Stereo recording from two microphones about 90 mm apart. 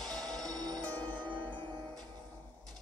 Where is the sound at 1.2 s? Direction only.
65° right (ahead or behind).